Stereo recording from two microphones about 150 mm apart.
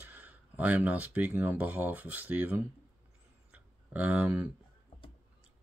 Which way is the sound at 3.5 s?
10° right (ahead or behind).